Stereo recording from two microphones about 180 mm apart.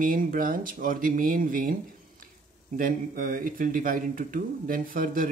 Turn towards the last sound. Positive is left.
turn(degrees=-50)  # may be behind; listen again after turning